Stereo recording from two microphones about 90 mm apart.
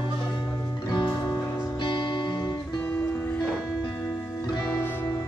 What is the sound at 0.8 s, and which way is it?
Music, 50° left (ahead or behind).